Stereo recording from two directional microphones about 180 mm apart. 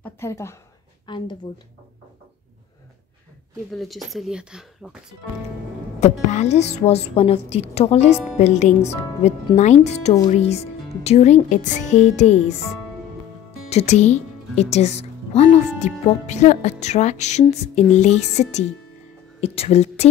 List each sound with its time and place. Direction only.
0.0 s a woman's voice: 15° left (ahead or behind)
1.0 s speech: 25° left (ahead or behind)
3.7 s speech: centre (ahead or behind)
5.9 s a woman's voice: 40° left (ahead or behind)
13.7 s a woman's voice: 35° left (ahead or behind)